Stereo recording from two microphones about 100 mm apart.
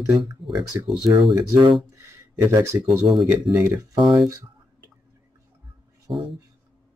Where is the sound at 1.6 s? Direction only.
50° right (ahead or behind).